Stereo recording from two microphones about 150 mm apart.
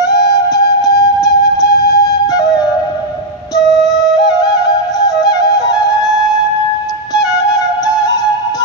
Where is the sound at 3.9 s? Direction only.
25° left (ahead or behind).